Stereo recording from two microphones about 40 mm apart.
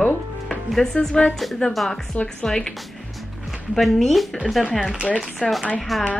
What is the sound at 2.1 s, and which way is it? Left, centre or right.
Speech, left.